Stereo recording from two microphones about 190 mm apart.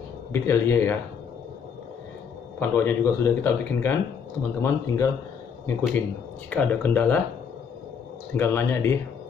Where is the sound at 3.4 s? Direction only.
10° left (ahead or behind).